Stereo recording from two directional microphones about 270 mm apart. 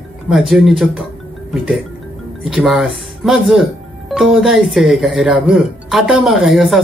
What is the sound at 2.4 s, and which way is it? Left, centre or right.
Speech, centre.